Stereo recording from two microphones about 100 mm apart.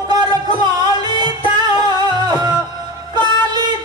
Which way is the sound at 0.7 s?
45° right (ahead or behind).